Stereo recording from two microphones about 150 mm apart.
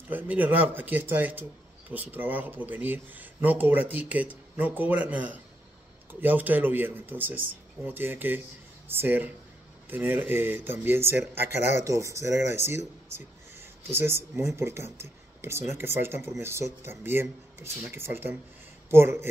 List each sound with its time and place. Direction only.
0.1 s speech: 10° right (ahead or behind)